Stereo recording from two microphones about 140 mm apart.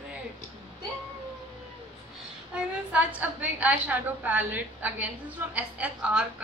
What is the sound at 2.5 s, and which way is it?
A woman's voice, 10° right (ahead or behind).